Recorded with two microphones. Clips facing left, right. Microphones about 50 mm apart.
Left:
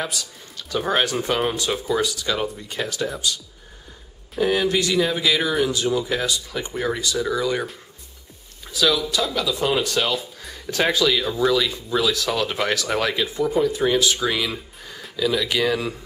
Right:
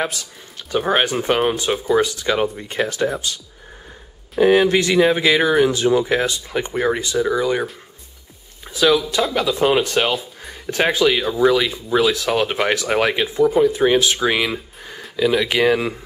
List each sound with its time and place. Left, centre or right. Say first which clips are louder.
0.0 s speech: right 4 dB; right
8.6 s speech: right 5 dB; right
14.4 s a sound: right 4 dB; centre
15.4 s speech: right 5 dB; right